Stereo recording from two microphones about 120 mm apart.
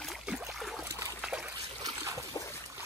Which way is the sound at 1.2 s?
10° right (ahead or behind).